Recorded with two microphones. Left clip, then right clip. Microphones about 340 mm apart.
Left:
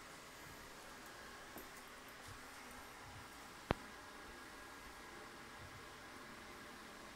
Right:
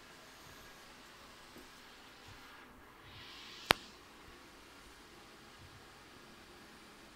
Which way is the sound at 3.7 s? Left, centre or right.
Right.